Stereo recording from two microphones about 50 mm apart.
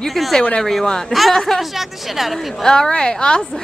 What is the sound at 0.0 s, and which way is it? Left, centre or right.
Speech, centre.